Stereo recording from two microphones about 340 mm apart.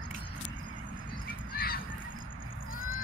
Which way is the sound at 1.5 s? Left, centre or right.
Left.